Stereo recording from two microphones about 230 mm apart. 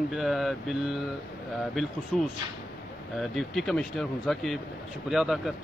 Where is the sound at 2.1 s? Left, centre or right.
Centre.